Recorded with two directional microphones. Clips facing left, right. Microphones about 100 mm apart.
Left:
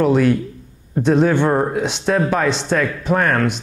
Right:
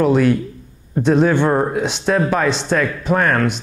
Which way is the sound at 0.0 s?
20° right (ahead or behind).